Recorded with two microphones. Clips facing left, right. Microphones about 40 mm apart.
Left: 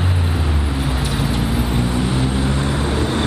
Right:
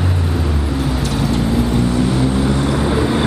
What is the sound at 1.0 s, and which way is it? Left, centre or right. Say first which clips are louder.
Vehicle: right 3 dB; centre.